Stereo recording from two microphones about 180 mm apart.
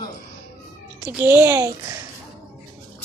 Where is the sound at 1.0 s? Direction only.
10° right (ahead or behind).